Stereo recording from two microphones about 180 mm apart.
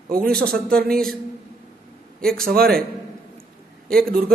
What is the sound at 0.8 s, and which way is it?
Speech, 55° right (ahead or behind).